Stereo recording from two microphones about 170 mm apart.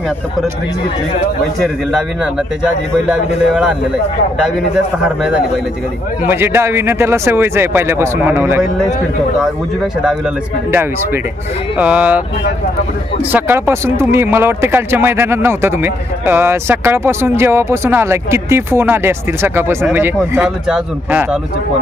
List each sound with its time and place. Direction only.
1.6 s a man's voice: 5° right (ahead or behind)
5.0 s a man's voice: 5° right (ahead or behind)
11.8 s speech: 10° right (ahead or behind)
13.3 s speech: 15° right (ahead or behind)